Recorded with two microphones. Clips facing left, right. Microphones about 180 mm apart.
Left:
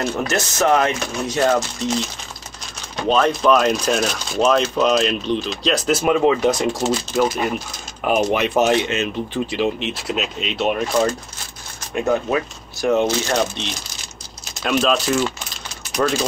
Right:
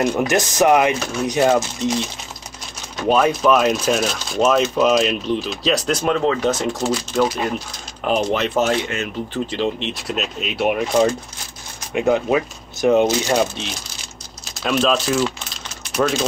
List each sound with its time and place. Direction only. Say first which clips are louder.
0.0 s speech: right 4 dB; 15° right (ahead or behind)
3.1 s speech: even; 5° right (ahead or behind); by 7.0 s 20° left (ahead or behind)
8.0 s speech: left 1 dB; 5° left (ahead or behind)